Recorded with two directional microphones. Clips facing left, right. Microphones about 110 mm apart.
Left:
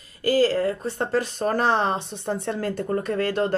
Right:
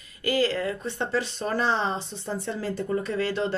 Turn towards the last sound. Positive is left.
turn(degrees=50)  # may be behind; listen again after turning